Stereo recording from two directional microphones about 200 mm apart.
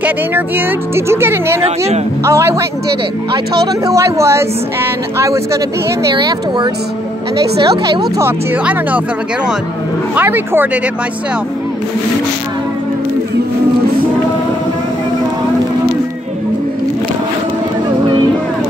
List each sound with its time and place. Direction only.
0.0 s speech: 10° right (ahead or behind)
3.6 s speech: 15° right (ahead or behind)
10.1 s speech: 10° right (ahead or behind)